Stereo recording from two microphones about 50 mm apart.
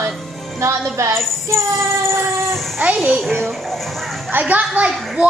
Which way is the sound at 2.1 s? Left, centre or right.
Right.